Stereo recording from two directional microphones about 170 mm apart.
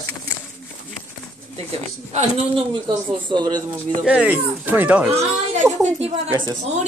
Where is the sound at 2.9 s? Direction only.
25° right (ahead or behind).